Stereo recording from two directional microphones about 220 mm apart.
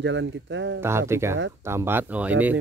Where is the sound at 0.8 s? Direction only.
10° right (ahead or behind).